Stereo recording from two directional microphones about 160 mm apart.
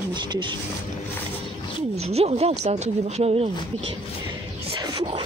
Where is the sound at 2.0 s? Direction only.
40° right (ahead or behind).